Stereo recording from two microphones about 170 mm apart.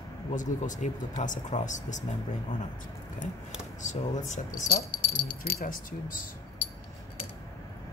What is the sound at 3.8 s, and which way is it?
Speech, 45° left (ahead or behind).